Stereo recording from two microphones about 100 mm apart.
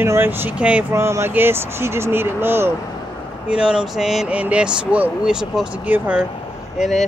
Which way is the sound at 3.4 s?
10° right (ahead or behind).